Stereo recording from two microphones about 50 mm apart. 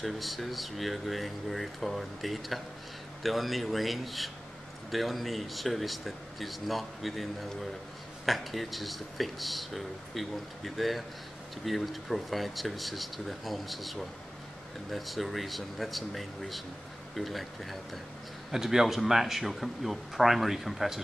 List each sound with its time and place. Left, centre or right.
0.0 s speech: centre
8.3 s speech: centre